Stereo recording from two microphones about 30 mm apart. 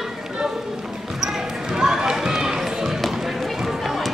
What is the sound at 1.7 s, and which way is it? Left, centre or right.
Run, right.